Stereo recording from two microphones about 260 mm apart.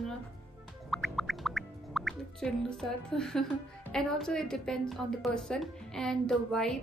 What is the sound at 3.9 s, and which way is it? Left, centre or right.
A woman's voice, centre.